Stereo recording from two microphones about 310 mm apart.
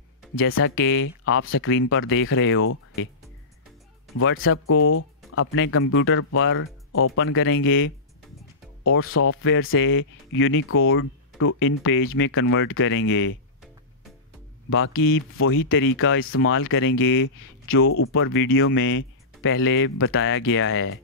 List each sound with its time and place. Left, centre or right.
0.4 s speech: left
4.2 s speech: left
14.7 s speech: left